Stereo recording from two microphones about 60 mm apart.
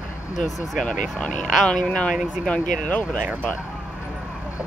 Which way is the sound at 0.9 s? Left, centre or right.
Centre.